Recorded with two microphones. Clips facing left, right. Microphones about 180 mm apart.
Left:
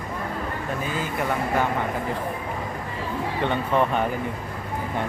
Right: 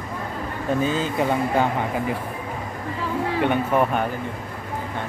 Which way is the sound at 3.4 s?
10° right (ahead or behind).